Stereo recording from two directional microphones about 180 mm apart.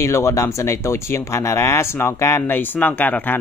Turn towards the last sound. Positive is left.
turn(degrees=10)  # may be behind; listen again after turning